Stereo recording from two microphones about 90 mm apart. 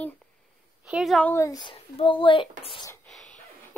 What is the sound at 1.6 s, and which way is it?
A child's voice, 70° left (ahead or behind).